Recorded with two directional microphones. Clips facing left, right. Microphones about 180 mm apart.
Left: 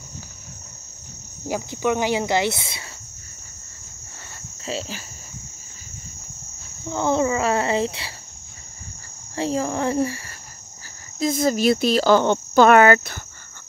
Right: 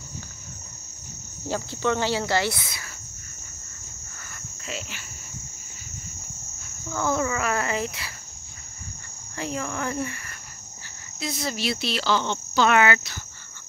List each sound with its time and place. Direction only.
1.5 s cricket: 15° left (ahead or behind)
4.3 s cricket: 30° left (ahead or behind)
6.8 s cricket: 25° left (ahead or behind)
9.3 s speech: 30° left (ahead or behind)
11.1 s speech: 45° left (ahead or behind)